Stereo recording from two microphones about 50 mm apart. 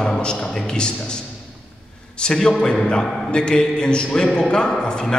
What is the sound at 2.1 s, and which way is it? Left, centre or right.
A man's voice, centre.